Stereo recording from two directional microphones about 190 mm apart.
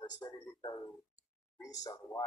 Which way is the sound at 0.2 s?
20° left (ahead or behind).